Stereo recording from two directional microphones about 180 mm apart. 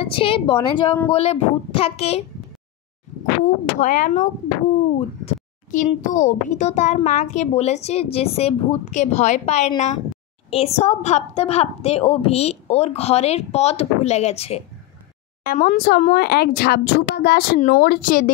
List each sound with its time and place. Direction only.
0.0 s a woman's voice: 30° left (ahead or behind)
3.4 s a child's voice: 45° left (ahead or behind)
15.4 s speech: 50° left (ahead or behind)
17.6 s speech: 45° left (ahead or behind)